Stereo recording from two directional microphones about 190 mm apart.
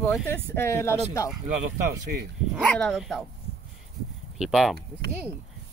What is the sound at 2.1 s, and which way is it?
Speech, 55° right (ahead or behind).